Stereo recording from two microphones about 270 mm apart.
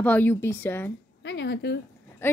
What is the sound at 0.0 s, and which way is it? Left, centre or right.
Speech, centre.